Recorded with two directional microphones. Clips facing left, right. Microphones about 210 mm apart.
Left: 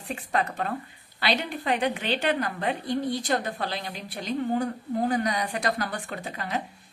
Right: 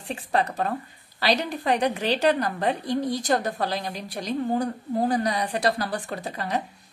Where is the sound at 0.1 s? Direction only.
30° right (ahead or behind).